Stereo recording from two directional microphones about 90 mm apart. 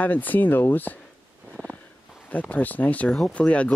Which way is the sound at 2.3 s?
15° left (ahead or behind).